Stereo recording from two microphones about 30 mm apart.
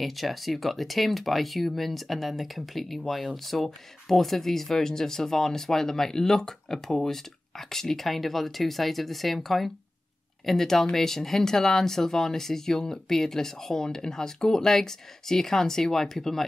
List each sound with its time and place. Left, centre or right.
0.0 s speech: centre